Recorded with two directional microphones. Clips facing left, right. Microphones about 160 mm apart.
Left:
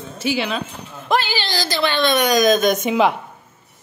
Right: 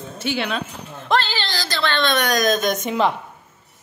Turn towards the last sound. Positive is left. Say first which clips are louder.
# left 3 dB
turn(degrees=5)  # may be behind; listen again after turning